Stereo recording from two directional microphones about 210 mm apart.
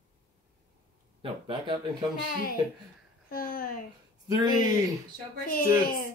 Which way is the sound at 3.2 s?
45° left (ahead or behind).